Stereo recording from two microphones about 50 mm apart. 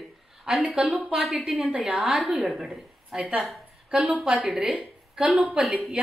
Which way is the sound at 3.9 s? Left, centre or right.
Right.